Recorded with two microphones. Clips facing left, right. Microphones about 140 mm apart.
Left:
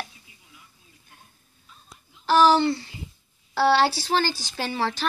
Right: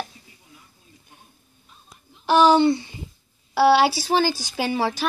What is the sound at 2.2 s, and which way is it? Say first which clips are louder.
Speech: right 3 dB; 20° right (ahead or behind).